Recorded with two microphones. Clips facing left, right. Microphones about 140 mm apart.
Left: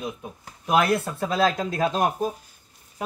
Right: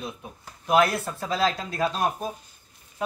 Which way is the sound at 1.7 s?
20° left (ahead or behind).